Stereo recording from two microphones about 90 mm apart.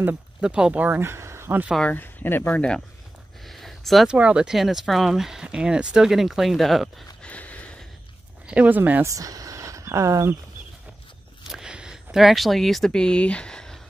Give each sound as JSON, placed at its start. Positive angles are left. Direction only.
{"t": 0.4, "sound": "speech", "side_deg": -10}
{"t": 1.0, "sound": "speech", "side_deg": -30}
{"t": 1.8, "sound": "speech", "side_deg": 20}
{"t": 3.4, "sound": "a sound", "side_deg": 0}
{"t": 4.1, "sound": "speech", "side_deg": -10}
{"t": 7.2, "sound": "a sound", "side_deg": 15}
{"t": 8.5, "sound": "speech", "side_deg": -15}
{"t": 9.0, "sound": "speech", "side_deg": -40}
{"t": 11.5, "sound": "speech", "side_deg": -10}